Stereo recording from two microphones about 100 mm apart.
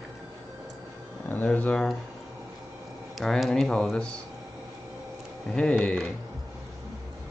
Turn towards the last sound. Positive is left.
turn(degrees=10)  # may be behind; listen again after turning